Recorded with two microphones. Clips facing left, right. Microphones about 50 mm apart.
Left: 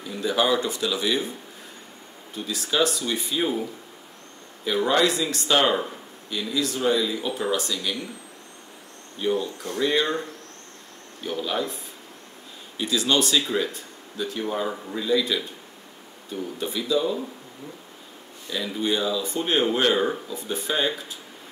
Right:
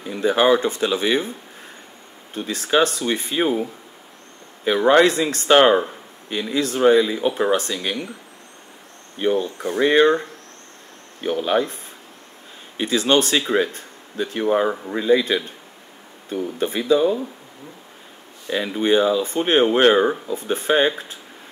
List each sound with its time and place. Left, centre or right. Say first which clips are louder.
0.0 s speech: right 6 dB; right
2.3 s speech: right 5 dB; right
4.6 s speech: right 7 dB; right
9.2 s speech: right 5 dB; right
18.5 s speech: right 7 dB; right
20.0 s speech: right 6 dB; right
20.3 s speech: right 8 dB; right